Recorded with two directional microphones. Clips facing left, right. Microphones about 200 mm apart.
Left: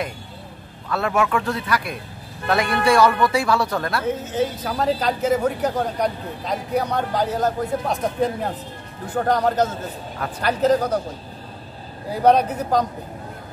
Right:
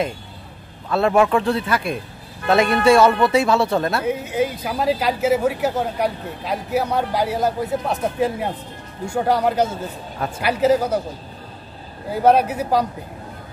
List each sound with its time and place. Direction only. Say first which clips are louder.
0.8 s a man's voice: right 5 dB; 30° right (ahead or behind)
4.0 s a woman's voice: right 1 dB; 10° right (ahead or behind)
12.1 s a woman's voice: right 1 dB; 5° right (ahead or behind)